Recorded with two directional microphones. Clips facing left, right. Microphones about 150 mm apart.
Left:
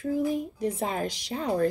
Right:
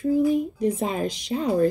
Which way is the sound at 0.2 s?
20° right (ahead or behind).